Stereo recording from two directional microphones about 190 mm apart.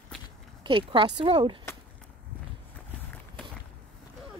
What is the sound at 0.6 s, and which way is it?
Speech, 25° right (ahead or behind).